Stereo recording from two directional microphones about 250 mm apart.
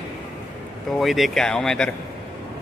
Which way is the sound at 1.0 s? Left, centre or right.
Centre.